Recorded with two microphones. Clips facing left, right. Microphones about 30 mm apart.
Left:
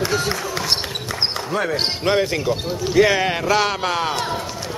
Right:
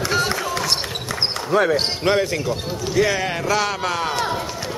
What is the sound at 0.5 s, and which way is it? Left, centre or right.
Basketball bounce, centre.